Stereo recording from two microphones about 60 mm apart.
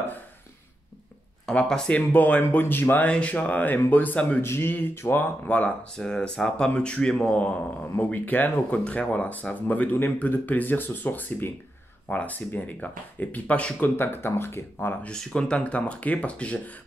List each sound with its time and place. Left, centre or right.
1.5 s a man's voice: centre
1.9 s speech: left
3.1 s speech: left
4.4 s speech: left
5.9 s a man's voice: centre
8.0 s speech: left
13.8 s speech: left
15.0 s speech: centre